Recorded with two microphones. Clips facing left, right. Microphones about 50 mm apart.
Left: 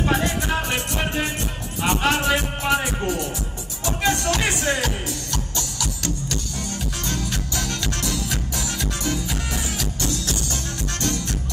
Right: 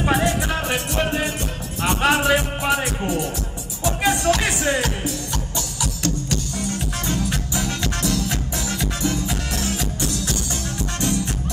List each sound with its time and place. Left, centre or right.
0.1 s music: centre
1.9 s speech: centre
3.8 s music: centre
7.1 s music: centre
8.0 s music: centre
8.7 s music: centre
11.0 s music: centre